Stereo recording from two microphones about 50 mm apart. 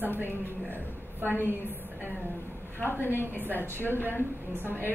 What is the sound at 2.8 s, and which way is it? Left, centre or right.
A woman's voice, left.